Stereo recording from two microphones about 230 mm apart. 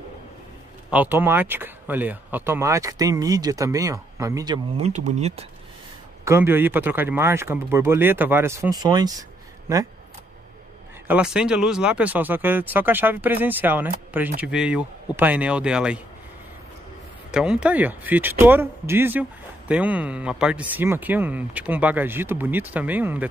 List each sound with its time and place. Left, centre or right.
0.8 s speech: centre
4.7 s speech: right
6.2 s speech: centre
11.1 s speech: centre
17.3 s speech: centre